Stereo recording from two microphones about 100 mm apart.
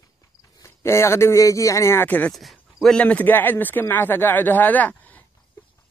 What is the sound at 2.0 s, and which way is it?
Speech, 15° left (ahead or behind).